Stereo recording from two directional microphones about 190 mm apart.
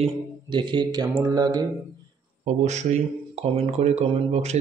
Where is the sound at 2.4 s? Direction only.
35° right (ahead or behind).